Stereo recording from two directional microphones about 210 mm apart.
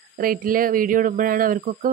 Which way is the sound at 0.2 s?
40° right (ahead or behind).